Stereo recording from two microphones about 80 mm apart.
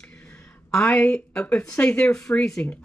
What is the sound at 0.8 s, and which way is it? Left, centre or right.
Speech, left.